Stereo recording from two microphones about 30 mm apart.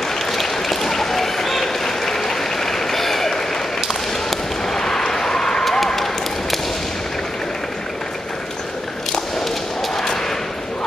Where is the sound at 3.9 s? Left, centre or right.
Centre.